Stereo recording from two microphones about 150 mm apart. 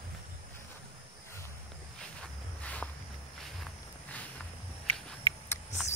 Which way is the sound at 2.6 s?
10° left (ahead or behind).